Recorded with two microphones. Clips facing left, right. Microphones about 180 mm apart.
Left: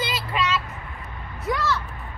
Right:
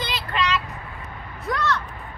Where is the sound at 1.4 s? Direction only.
Centre (ahead or behind).